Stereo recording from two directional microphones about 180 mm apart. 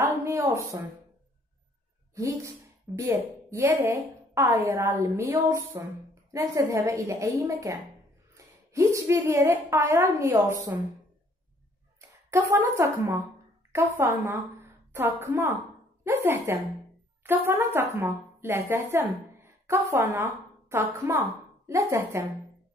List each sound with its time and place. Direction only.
0.2 s a sound: 15° right (ahead or behind)
2.1 s a woman's voice: 15° right (ahead or behind)
12.3 s a woman's voice: 15° right (ahead or behind)